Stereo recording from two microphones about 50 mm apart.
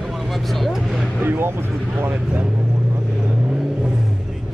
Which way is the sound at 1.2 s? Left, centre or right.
Right.